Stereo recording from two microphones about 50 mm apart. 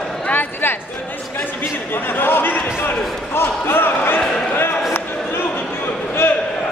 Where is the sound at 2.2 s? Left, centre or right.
Left.